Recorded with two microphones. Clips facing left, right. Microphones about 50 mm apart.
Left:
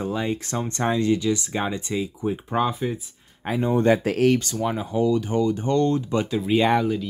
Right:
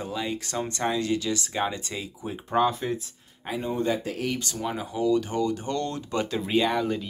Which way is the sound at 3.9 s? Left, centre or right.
Left.